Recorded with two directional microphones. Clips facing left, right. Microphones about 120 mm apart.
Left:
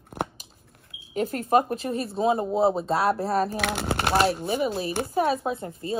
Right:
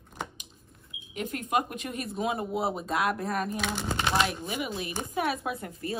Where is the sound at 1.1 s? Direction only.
35° left (ahead or behind).